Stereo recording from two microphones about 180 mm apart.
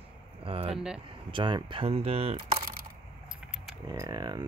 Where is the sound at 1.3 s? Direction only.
25° right (ahead or behind).